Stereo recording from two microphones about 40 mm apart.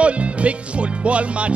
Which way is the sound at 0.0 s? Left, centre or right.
Right.